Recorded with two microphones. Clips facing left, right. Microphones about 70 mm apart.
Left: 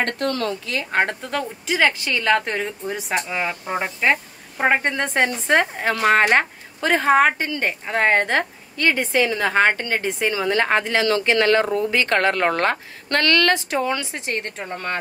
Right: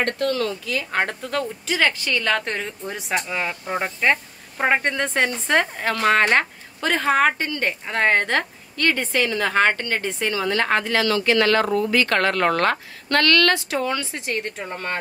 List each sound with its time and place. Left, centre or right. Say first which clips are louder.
0.0 s speech: even; left
1.3 s a woman's voice: even; centre